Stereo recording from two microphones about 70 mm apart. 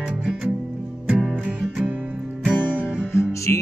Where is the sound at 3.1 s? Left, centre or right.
Left.